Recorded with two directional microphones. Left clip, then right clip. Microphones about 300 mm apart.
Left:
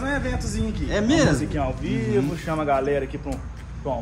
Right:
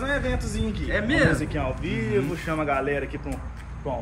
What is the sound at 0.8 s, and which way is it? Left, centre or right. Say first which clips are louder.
Speech: left 2 dB; centre.